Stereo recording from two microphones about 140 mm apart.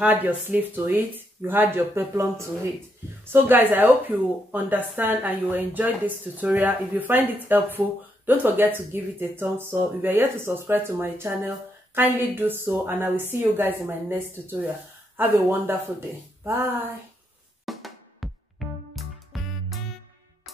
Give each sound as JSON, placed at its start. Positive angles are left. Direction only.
{"t": 0.0, "sound": "speech", "side_deg": -10}
{"t": 17.6, "sound": "drum", "side_deg": 0}
{"t": 18.6, "sound": "music", "side_deg": 0}